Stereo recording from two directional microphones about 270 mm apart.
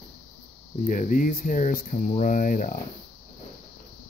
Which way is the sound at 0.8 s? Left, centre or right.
Left.